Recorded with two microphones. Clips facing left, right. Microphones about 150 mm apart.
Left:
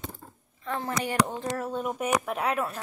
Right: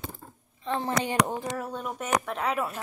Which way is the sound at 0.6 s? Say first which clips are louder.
Right 2 dB; 20° right (ahead or behind).